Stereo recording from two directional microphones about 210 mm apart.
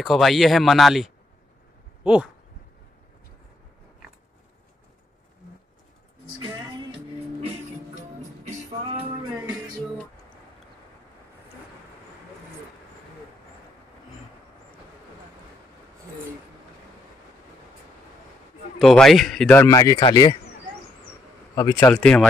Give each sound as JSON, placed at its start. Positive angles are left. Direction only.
{"t": 0.0, "sound": "speech", "side_deg": 0}
{"t": 18.8, "sound": "speech", "side_deg": 0}
{"t": 19.6, "sound": "speech", "side_deg": 15}
{"t": 21.5, "sound": "speech", "side_deg": 15}